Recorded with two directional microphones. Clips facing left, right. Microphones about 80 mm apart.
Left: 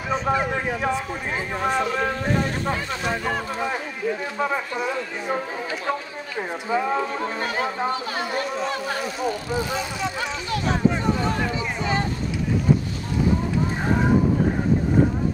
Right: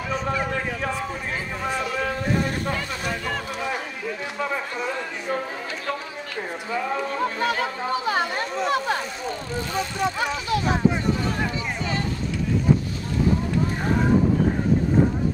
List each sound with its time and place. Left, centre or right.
0.1 s a man's voice: left
9.2 s a man's voice: centre
10.2 s speech: centre